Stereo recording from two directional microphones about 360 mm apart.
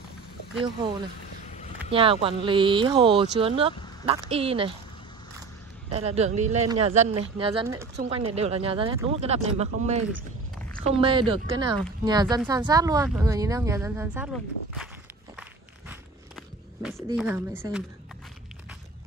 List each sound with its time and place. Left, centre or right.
1.9 s speech: centre
5.9 s speech: centre
15.9 s walk: centre